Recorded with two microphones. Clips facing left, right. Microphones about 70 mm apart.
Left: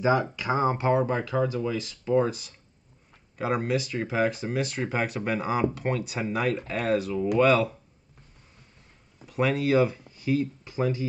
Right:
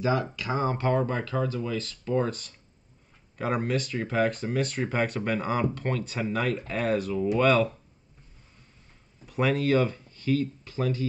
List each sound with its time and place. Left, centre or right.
0.0 s speech: left; by 7.7 s centre
9.2 s speech: centre